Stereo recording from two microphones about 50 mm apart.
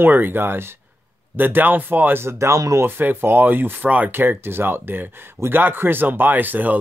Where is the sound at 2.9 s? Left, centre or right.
Right.